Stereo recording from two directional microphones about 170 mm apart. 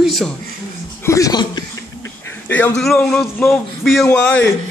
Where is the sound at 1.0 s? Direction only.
20° left (ahead or behind).